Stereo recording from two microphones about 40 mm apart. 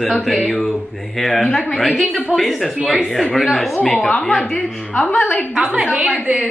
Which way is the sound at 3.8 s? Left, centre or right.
Left.